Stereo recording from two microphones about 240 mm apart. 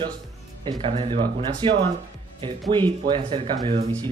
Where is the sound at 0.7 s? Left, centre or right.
Right.